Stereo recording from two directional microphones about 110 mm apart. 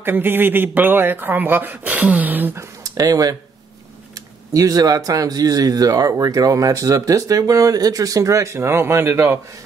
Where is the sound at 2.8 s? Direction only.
35° right (ahead or behind).